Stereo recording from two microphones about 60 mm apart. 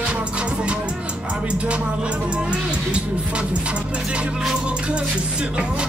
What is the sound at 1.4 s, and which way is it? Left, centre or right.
Music, centre.